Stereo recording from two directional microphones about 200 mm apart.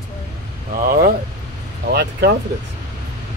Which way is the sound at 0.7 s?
50° right (ahead or behind).